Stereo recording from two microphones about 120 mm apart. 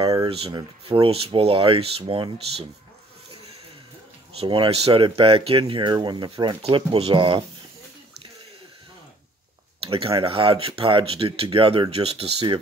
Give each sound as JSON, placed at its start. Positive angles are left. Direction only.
{"t": 0.0, "sound": "a sound", "side_deg": -35}
{"t": 0.8, "sound": "speech", "side_deg": -50}
{"t": 4.4, "sound": "speech", "side_deg": -50}
{"t": 9.8, "sound": "speech", "side_deg": -50}